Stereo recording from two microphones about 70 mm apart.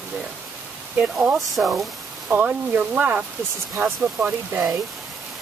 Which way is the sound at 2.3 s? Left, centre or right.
Right.